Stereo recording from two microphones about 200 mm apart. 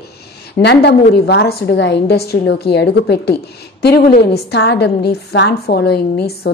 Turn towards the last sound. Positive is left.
turn(degrees=55)  # may be behind; listen again after turning